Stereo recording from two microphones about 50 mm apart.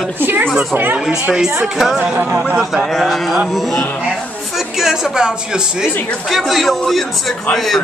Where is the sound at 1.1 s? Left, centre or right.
Centre.